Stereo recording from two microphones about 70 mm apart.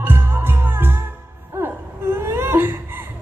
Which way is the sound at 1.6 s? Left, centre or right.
Right.